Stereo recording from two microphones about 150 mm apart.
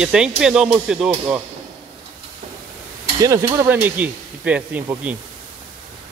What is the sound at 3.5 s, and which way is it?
Speech, 15° right (ahead or behind).